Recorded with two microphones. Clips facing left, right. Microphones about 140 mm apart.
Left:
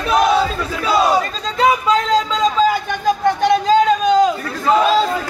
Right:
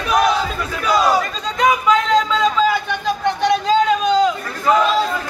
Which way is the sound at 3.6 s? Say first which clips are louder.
Left 2 dB; 45° left (ahead or behind).